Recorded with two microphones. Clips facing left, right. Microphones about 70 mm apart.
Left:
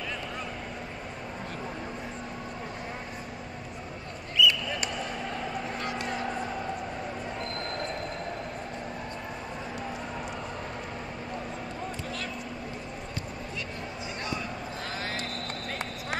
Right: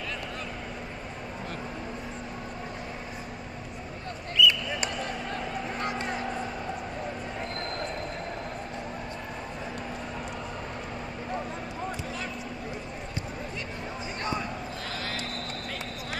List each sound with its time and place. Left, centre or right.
4.4 s basketball bounce: centre
15.1 s basketball bounce: left